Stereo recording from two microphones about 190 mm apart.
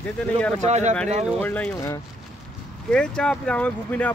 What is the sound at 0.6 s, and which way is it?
Speech, 35° right (ahead or behind).